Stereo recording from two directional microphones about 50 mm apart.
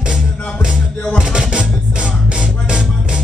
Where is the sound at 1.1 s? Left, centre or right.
Centre.